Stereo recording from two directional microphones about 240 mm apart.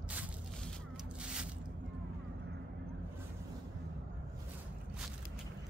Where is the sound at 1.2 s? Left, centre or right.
Centre.